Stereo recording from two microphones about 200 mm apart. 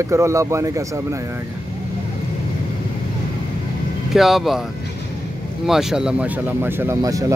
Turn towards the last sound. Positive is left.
turn(degrees=-15)  # may be behind; listen again after turning